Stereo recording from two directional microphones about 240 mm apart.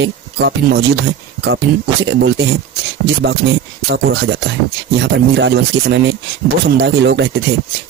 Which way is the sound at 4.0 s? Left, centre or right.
Right.